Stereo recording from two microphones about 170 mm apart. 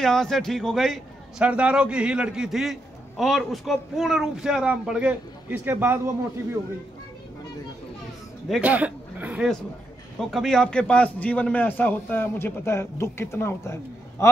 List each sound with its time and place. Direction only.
0.0 s a man's voice: centre (ahead or behind); by 5.9 s 15° right (ahead or behind)
8.5 s a man's voice: 5° right (ahead or behind)
10.1 s a man's voice: centre (ahead or behind)